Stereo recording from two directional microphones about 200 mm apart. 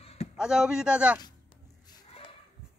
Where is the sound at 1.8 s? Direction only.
20° left (ahead or behind).